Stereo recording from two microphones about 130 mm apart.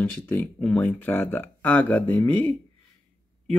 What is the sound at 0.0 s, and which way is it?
Speech, 10° left (ahead or behind).